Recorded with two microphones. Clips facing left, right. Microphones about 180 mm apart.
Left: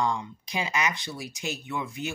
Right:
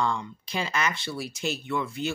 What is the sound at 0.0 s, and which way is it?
Speech, 15° left (ahead or behind).